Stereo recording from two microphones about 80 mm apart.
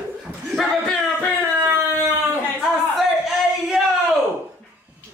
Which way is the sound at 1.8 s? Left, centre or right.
Left.